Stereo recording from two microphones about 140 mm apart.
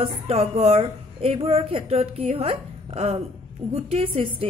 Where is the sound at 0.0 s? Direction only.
45° right (ahead or behind).